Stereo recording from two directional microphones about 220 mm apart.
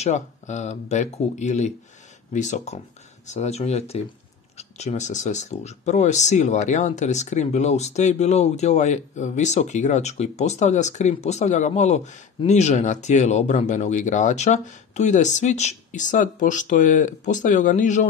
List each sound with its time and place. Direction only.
0.0 s speech: 30° left (ahead or behind)